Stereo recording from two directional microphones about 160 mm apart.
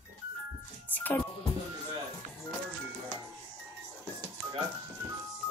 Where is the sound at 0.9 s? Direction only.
10° left (ahead or behind).